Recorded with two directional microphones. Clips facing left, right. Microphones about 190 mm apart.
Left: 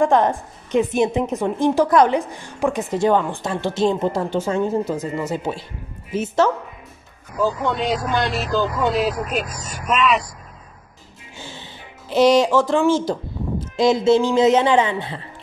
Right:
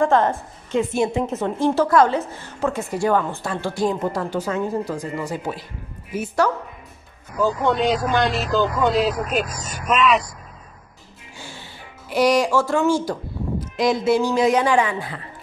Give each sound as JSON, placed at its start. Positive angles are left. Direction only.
{"t": 0.0, "sound": "a woman's voice", "side_deg": 15}
{"t": 7.7, "sound": "speech", "side_deg": 0}
{"t": 11.3, "sound": "speech", "side_deg": 20}